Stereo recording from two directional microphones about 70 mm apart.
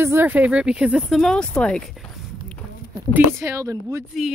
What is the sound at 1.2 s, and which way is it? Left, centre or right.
Speech, centre.